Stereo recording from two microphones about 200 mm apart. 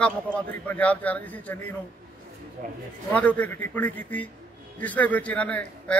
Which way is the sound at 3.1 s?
5° left (ahead or behind).